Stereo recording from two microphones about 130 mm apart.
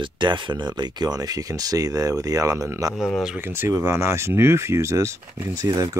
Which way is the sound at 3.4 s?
15° right (ahead or behind).